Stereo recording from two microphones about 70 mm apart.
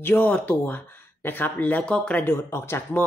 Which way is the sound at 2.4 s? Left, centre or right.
Left.